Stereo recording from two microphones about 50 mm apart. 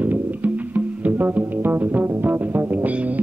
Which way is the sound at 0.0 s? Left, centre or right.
Right.